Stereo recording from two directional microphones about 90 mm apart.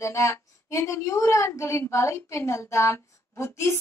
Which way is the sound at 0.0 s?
35° left (ahead or behind).